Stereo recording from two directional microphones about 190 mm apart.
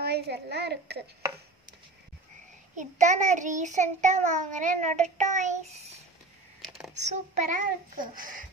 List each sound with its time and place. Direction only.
0.0 s a child's voice: 60° right (ahead or behind)
2.7 s child singing: 40° right (ahead or behind)